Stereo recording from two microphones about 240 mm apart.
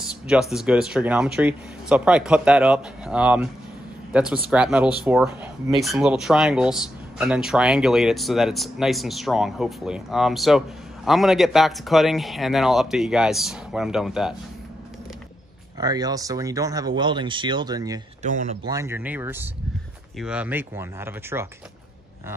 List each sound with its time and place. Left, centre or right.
0.3 s speech: centre
15.8 s speech: centre
18.2 s speech: right
18.7 s speech: centre